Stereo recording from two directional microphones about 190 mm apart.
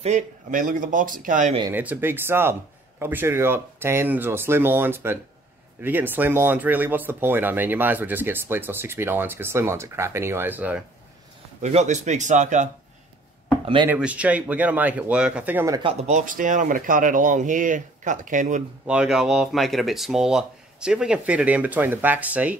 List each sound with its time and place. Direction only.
0.0 s speech: 40° right (ahead or behind)
1.7 s speech: 10° right (ahead or behind)
11.6 s speech: 35° right (ahead or behind)
13.8 s speech: 5° right (ahead or behind)
15.8 s speech: 35° right (ahead or behind)
18.9 s speech: 5° right (ahead or behind)